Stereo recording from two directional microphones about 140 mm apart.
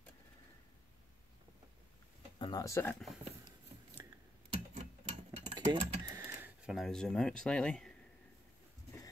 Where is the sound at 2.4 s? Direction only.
25° left (ahead or behind).